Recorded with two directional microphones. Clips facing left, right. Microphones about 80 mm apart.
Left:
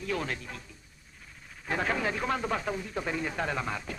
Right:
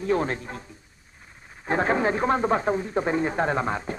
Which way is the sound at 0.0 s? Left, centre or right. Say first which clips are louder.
Right 9 dB; right.